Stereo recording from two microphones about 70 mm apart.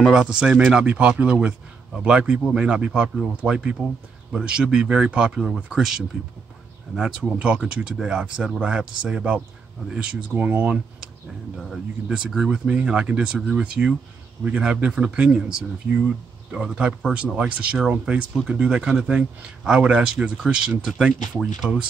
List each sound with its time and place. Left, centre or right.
0.2 s speech: centre
11.5 s speech: centre